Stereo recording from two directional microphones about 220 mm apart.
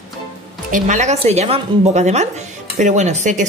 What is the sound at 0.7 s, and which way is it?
A woman's voice, 35° right (ahead or behind).